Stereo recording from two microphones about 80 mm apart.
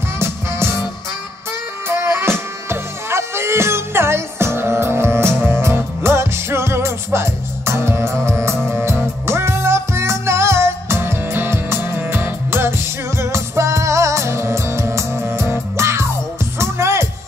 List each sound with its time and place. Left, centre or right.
0.2 s music: right
1.9 s music: right